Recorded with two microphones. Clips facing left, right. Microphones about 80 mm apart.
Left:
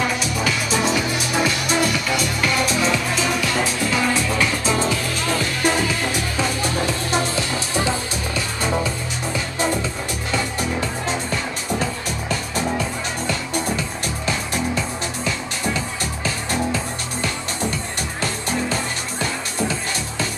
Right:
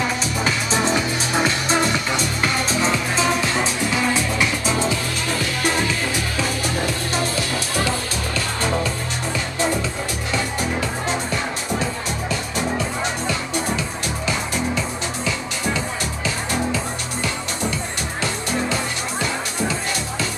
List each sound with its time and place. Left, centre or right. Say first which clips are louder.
0.4 s music: even; right
7.1 s music: left 1 dB; left